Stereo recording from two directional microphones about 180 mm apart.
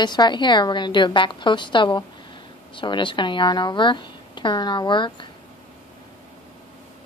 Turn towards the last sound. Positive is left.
turn(degrees=25)  # may be behind; listen again after turning